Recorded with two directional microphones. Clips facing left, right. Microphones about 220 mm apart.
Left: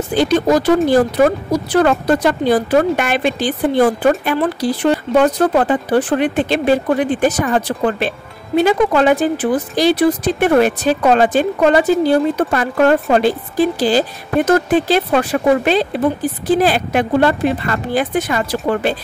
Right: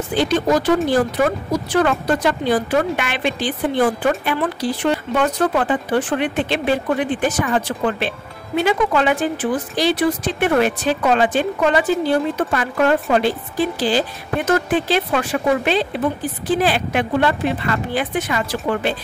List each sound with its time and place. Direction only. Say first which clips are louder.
0.1 s speech: left 4 dB; 40° left (ahead or behind)